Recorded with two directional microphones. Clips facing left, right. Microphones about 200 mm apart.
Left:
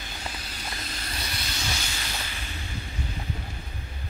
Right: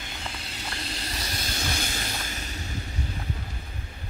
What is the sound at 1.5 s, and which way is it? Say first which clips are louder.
Vehicle: right 5 dB; 45° right (ahead or behind).